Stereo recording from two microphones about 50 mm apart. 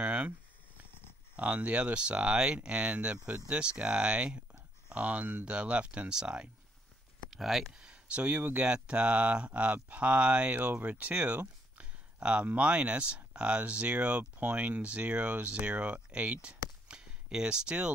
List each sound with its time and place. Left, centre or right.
0.0 s a sound: right
1.3 s speech: right
7.2 s speech: centre
7.7 s speech: centre
10.5 s speech: right
16.1 s a sound: right